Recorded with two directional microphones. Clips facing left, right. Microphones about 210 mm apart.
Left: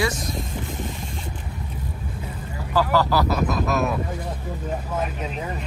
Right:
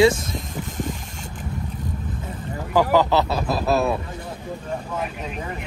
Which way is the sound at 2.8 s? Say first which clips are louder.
Right 3 dB; 15° right (ahead or behind).